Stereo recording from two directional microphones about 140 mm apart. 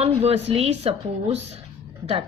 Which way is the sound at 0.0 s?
50° right (ahead or behind).